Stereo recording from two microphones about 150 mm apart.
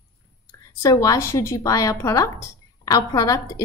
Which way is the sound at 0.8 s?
25° left (ahead or behind).